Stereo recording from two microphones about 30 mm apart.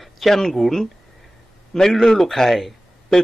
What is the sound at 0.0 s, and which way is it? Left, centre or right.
Speech, centre.